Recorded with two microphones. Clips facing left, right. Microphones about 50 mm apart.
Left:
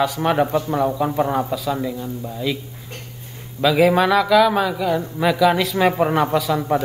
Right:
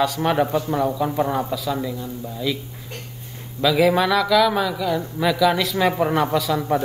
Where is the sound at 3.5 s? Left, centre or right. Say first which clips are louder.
Left 2 dB; centre.